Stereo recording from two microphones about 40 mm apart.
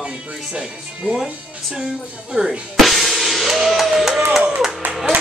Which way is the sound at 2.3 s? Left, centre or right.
Centre.